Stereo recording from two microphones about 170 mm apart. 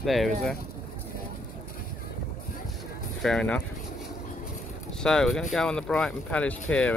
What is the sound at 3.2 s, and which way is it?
Speech, 5° left (ahead or behind).